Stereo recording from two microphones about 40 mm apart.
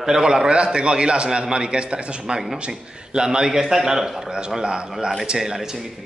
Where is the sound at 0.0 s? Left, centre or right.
Centre.